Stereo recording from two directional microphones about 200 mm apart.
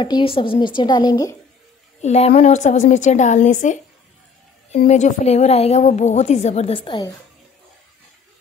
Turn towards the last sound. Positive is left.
turn(degrees=25)  # may be behind; listen again after turning